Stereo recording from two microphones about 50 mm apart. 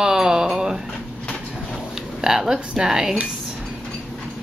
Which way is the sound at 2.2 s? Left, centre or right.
Centre.